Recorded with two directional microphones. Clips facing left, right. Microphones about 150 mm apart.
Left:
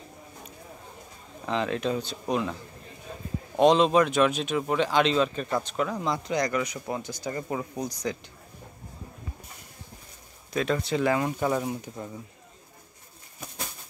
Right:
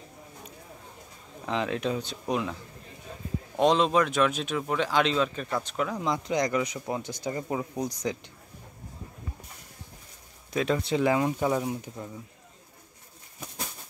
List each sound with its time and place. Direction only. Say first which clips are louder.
1.4 s speech: left 1 dB; 10° right (ahead or behind)
3.5 s speech: left 3 dB; centre (ahead or behind)
6.0 s speech: even; 20° right (ahead or behind)
10.5 s speech: even; 15° right (ahead or behind)